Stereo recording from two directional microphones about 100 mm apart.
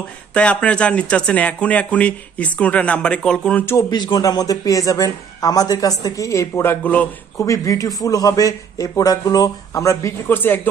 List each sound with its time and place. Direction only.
0.3 s speech: 10° left (ahead or behind)
3.9 s speech: 45° left (ahead or behind); by 7.1 s 15° left (ahead or behind)
7.3 s speech: 30° left (ahead or behind)
10.2 s speech: 20° left (ahead or behind)